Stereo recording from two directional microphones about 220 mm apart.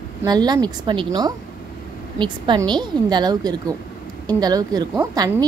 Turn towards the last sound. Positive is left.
turn(degrees=-15)  # may be behind; listen again after turning